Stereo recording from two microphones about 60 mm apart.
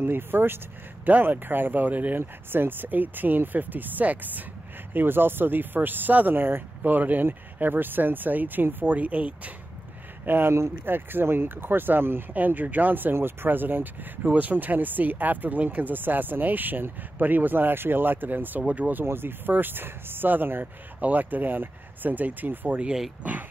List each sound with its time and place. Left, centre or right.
0.0 s speech: right
10.2 s speech: right
19.0 s speech: right